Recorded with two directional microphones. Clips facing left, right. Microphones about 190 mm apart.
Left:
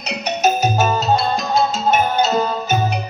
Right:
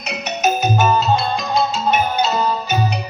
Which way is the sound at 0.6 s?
40° left (ahead or behind).